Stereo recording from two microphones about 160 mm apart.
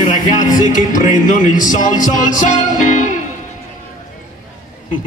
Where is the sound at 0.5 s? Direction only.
55° left (ahead or behind).